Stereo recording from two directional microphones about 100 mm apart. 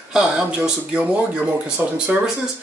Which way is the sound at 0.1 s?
10° right (ahead or behind).